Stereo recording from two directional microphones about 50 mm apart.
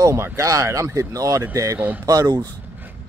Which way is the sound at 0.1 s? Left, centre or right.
Right.